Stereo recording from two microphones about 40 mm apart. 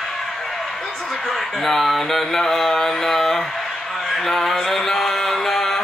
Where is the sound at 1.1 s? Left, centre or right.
Centre.